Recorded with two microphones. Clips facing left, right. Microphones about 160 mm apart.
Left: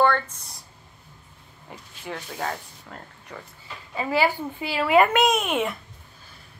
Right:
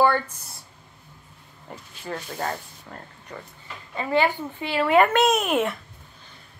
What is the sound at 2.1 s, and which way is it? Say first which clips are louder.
A woman's voice: right 1 dB; centre (ahead or behind).